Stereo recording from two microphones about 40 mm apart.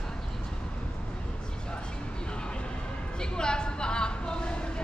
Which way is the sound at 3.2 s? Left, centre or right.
Centre.